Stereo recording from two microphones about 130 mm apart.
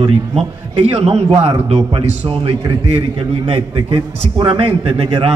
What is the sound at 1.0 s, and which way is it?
A man's voice, 50° right (ahead or behind).